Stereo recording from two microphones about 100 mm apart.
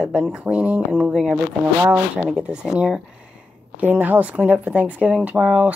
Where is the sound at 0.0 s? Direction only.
5° right (ahead or behind).